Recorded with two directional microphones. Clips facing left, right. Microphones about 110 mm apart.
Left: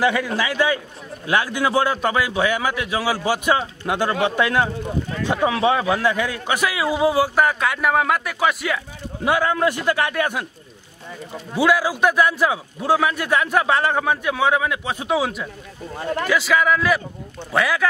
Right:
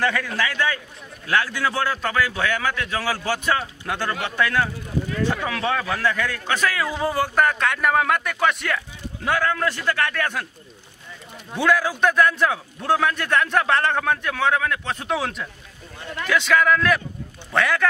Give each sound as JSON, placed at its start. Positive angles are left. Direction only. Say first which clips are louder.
{"t": 0.0, "sound": "a man's voice", "louder": "left 3 dB", "side_deg": 10}
{"t": 11.5, "sound": "a man's voice", "louder": "left 2 dB", "side_deg": 5}
{"t": 16.0, "sound": "a man's voice", "louder": "left 8 dB", "side_deg": 45}
{"t": 16.3, "sound": "a man's voice", "louder": "right 1 dB", "side_deg": 5}